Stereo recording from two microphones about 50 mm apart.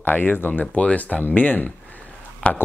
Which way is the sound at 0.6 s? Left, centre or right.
Left.